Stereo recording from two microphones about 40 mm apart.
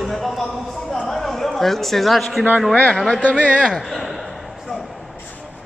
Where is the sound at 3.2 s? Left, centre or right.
Left.